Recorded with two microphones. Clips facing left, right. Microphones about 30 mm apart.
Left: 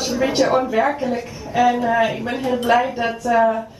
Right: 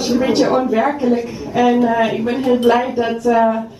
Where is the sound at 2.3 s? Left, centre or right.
Right.